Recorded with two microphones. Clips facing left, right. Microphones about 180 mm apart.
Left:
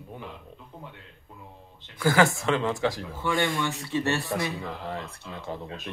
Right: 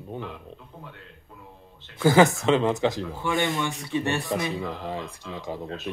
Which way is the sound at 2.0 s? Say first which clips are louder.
Right 4 dB; 20° right (ahead or behind).